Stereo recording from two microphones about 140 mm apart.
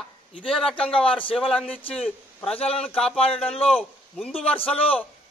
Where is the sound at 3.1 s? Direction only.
45° left (ahead or behind).